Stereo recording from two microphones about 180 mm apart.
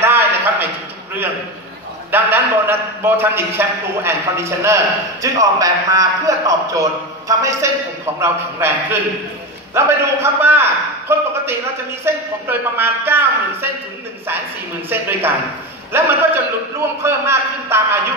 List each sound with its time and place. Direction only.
0.0 s a sound: 10° right (ahead or behind)
2.0 s a man's voice: 10° right (ahead or behind)
14.9 s a man's voice: 10° right (ahead or behind)